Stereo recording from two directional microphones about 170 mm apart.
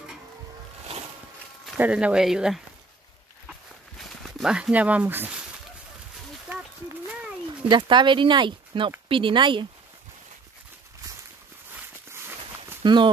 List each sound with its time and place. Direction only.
1.8 s speech: 5° right (ahead or behind)
4.4 s speech: 5° right (ahead or behind)
7.7 s speech: 25° right (ahead or behind)
12.1 s a sound: 15° right (ahead or behind)
12.8 s speech: 25° right (ahead or behind)